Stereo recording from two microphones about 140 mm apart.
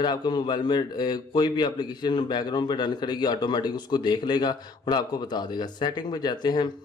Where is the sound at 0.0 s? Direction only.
30° left (ahead or behind).